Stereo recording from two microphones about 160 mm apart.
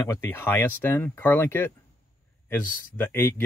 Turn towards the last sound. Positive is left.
turn(degrees=15)  # may be behind; listen again after turning